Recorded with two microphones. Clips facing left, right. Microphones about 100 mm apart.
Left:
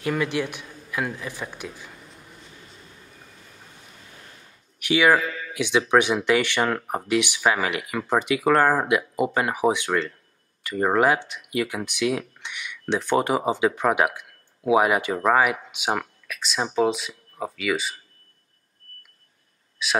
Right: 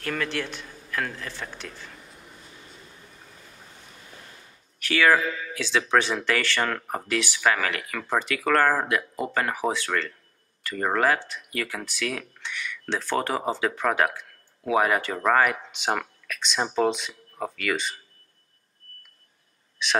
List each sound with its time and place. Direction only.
0.0 s speech: 10° left (ahead or behind)
4.7 s speech: 15° left (ahead or behind)
19.8 s speech: 5° left (ahead or behind)